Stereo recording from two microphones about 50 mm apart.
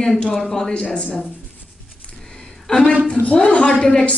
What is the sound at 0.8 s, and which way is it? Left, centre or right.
Speech, left.